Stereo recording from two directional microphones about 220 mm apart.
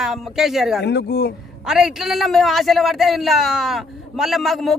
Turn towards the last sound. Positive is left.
turn(degrees=0)  # may be behind; listen again after turning